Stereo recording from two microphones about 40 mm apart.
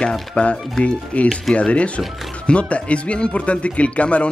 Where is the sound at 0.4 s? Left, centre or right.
Left.